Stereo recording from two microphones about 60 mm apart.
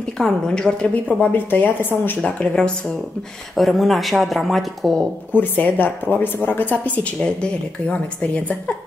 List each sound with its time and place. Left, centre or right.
0.2 s a woman's voice: centre
1.2 s a woman's voice: left
2.2 s a woman's voice: centre
3.5 s speech: centre
5.3 s speech: left